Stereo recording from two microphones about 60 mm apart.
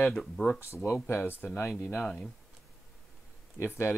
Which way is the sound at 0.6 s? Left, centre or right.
Left.